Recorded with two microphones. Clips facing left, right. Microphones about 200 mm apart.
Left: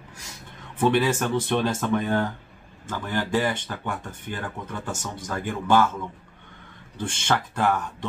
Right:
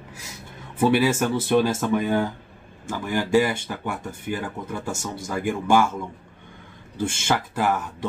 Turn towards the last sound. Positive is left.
turn(degrees=-5)  # may be behind; listen again after turning